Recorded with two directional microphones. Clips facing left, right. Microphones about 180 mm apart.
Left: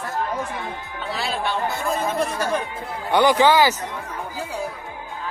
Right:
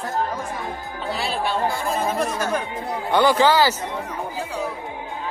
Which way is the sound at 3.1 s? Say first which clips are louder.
Left 1 dB; 15° left (ahead or behind).